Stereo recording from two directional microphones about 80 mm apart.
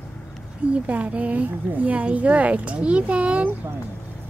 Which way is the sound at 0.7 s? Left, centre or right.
Centre.